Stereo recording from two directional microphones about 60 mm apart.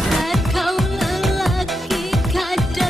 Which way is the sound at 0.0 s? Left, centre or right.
Centre.